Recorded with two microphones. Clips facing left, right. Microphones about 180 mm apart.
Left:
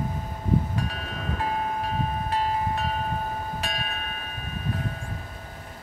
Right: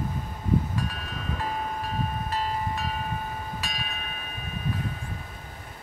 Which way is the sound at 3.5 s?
55° left (ahead or behind).